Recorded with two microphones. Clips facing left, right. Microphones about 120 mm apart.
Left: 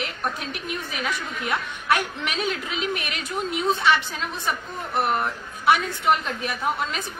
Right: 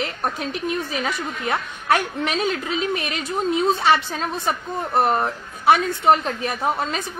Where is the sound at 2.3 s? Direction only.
30° right (ahead or behind).